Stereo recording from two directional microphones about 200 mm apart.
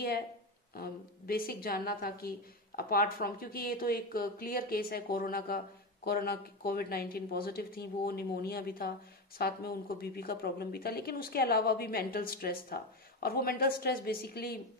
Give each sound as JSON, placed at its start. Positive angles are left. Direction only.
{"t": 0.7, "sound": "a woman's voice", "side_deg": 50}